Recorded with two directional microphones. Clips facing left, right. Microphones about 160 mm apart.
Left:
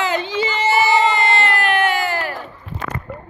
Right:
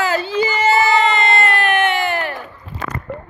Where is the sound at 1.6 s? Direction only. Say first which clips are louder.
Right 1 dB; 20° right (ahead or behind).